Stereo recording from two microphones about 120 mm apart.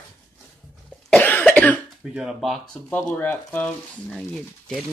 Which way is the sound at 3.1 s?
15° left (ahead or behind).